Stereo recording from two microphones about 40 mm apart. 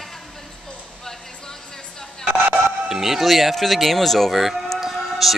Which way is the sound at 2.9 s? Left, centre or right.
Centre.